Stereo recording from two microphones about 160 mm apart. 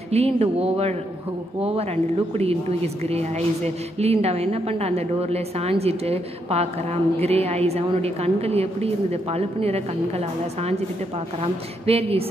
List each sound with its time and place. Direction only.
0.1 s a woman's voice: 40° right (ahead or behind)
2.3 s a woman's voice: 40° right (ahead or behind)